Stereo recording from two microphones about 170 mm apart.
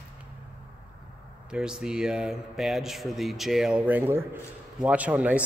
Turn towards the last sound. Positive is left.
turn(degrees=-10)  # may be behind; listen again after turning